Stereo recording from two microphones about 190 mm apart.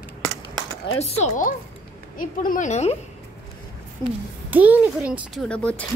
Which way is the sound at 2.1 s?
45° left (ahead or behind).